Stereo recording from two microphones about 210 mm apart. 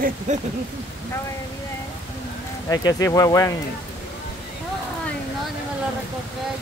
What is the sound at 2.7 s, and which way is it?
Speech, 15° left (ahead or behind).